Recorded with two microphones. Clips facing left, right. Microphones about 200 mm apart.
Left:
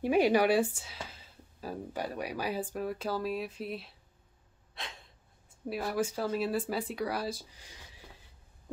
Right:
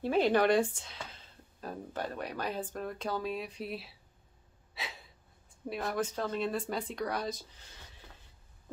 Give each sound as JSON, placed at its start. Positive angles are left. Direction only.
{"t": 0.0, "sound": "speech", "side_deg": 10}
{"t": 4.7, "sound": "gasp", "side_deg": -5}
{"t": 5.7, "sound": "speech", "side_deg": 5}